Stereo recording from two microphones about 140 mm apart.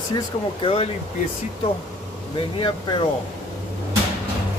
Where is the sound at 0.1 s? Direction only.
40° left (ahead or behind).